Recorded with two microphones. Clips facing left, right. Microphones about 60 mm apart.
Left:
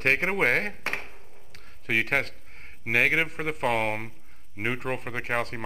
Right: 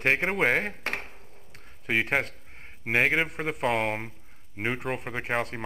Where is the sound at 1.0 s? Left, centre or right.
Centre.